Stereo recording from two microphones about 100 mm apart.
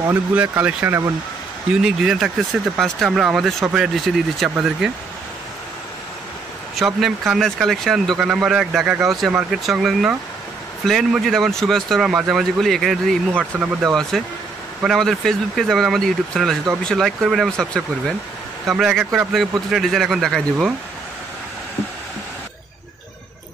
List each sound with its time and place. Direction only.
0.1 s speech: 15° right (ahead or behind)
1.8 s speech: 5° right (ahead or behind)
6.7 s speech: centre (ahead or behind)
13.3 s speech: 15° right (ahead or behind)
14.1 s speech: centre (ahead or behind)